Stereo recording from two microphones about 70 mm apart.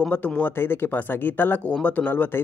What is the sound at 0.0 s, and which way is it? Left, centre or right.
Speech, centre.